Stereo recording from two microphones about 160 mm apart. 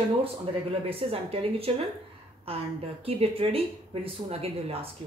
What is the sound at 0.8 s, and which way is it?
Speech, 35° right (ahead or behind).